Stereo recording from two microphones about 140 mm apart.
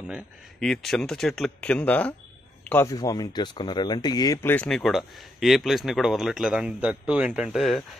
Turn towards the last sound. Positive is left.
turn(degrees=0)  # may be behind; listen again after turning